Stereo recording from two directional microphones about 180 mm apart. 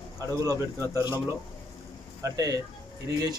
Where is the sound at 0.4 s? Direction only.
15° right (ahead or behind).